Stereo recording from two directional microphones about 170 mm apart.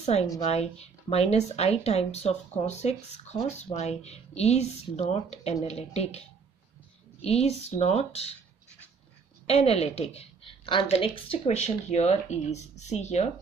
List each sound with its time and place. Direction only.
0.0 s speech: 40° left (ahead or behind)
9.5 s speech: 35° left (ahead or behind)